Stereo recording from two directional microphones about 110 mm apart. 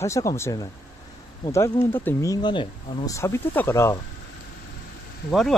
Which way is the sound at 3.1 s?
25° left (ahead or behind).